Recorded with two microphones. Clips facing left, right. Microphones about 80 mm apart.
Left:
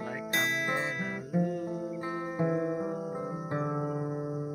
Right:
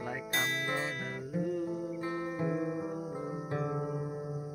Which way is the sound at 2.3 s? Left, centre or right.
Centre.